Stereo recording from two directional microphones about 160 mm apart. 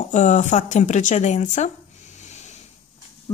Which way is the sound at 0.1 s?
50° left (ahead or behind).